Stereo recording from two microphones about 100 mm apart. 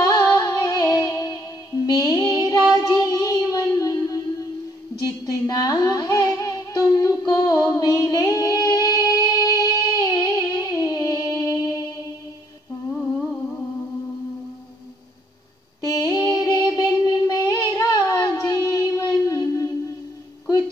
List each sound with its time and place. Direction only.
0.0 s music: 35° left (ahead or behind)
15.8 s a sound: 35° left (ahead or behind)
17.0 s child singing: 40° left (ahead or behind)